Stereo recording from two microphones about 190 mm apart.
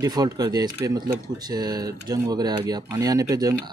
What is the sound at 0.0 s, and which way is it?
Speech, 20° right (ahead or behind).